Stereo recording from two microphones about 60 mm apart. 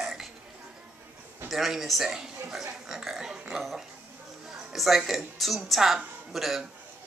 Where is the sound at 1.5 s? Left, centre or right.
Centre.